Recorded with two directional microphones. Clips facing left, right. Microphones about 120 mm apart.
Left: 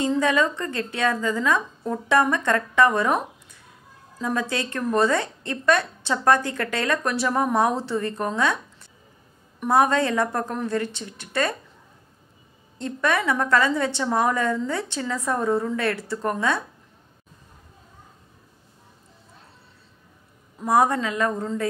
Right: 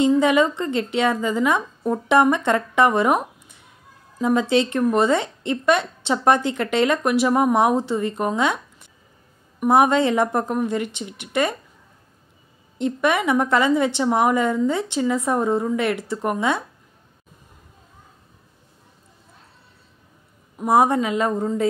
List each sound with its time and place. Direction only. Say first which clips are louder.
0.1 s a woman's voice: right 4 dB; 20° right (ahead or behind)
12.7 s a woman's voice: right 3 dB; 15° right (ahead or behind)
20.5 s a woman's voice: right 3 dB; 20° right (ahead or behind)